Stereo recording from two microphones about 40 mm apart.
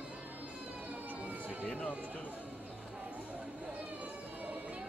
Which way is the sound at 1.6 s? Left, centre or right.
Left.